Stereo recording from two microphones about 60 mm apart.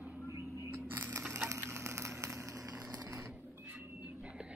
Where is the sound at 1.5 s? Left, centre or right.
Right.